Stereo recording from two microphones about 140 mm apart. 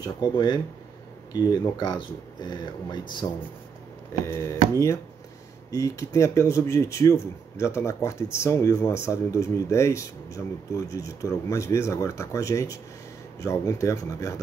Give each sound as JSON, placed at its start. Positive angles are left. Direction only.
{"t": 0.0, "sound": "speech", "side_deg": 30}
{"t": 4.3, "sound": "speech", "side_deg": 20}
{"t": 5.7, "sound": "speech", "side_deg": 20}